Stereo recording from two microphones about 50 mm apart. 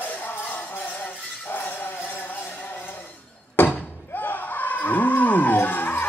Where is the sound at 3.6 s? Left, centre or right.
Left.